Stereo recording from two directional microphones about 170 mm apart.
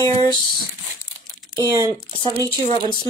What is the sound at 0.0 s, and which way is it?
Speech, 25° left (ahead or behind).